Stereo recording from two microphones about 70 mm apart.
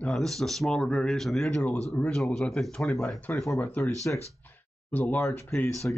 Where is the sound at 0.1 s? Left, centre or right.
Centre.